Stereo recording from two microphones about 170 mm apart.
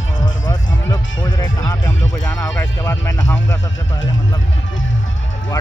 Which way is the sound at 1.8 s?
5° left (ahead or behind).